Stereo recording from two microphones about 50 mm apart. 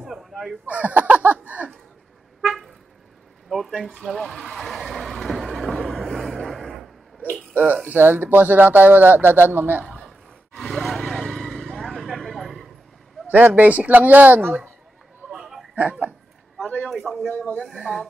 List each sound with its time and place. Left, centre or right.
0.0 s fowl: centre
0.7 s speech: right
2.4 s vehicle: centre
7.5 s speech: right
9.9 s a sound: centre
12.2 s vehicle: centre
13.3 s speech: right
15.3 s a sound: centre
15.7 s speech: right
17.3 s speech: left
17.9 s speech: left